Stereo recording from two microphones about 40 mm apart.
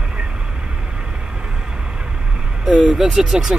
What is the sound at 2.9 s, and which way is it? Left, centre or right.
Speech, centre.